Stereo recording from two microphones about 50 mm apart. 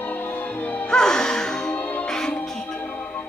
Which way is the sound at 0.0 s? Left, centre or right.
Left.